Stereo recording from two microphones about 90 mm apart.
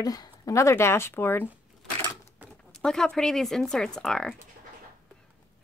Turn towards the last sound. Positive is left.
turn(degrees=5)  # may be behind; listen again after turning